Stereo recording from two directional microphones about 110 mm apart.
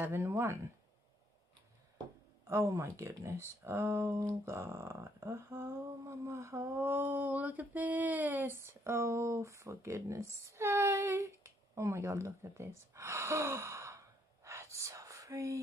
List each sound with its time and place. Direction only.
0.0 s speech: 25° right (ahead or behind)
2.4 s speech: 25° right (ahead or behind)